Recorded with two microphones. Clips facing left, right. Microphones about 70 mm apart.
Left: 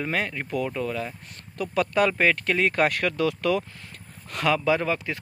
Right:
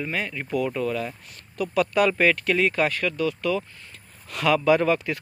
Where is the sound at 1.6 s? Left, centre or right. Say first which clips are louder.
Right 1 dB; left.